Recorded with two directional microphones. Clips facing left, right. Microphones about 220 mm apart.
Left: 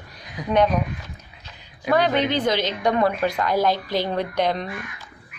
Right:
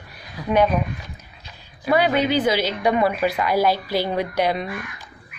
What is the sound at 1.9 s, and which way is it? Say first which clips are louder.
A woman's voice: right 1 dB; 10° right (ahead or behind).